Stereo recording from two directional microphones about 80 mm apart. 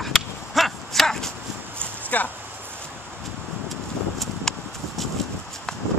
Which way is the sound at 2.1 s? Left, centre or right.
Left.